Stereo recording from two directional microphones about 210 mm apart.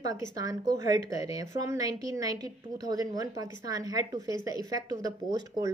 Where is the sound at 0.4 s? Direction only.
15° right (ahead or behind).